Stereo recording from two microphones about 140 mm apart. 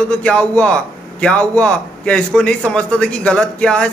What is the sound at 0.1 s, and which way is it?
A man's voice, 10° left (ahead or behind).